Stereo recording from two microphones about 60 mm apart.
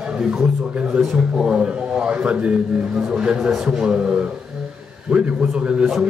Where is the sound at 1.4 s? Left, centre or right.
Centre.